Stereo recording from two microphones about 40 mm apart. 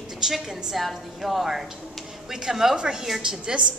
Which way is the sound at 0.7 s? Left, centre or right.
Centre.